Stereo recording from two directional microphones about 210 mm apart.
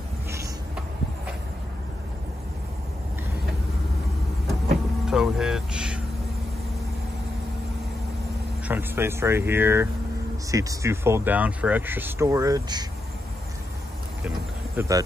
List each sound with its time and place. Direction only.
0.3 s a sound: 15° right (ahead or behind)
5.0 s music: 5° right (ahead or behind)
8.6 s speech: 10° right (ahead or behind)
14.8 s speech: 15° right (ahead or behind)